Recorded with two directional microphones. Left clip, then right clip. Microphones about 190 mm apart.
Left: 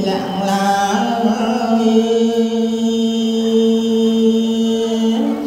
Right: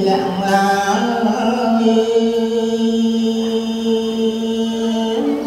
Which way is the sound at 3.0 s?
35° left (ahead or behind).